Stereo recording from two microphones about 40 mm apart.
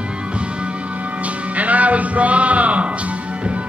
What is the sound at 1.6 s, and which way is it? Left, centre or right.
Music, right.